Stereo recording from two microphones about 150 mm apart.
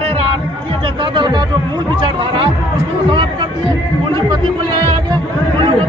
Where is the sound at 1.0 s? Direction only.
30° right (ahead or behind).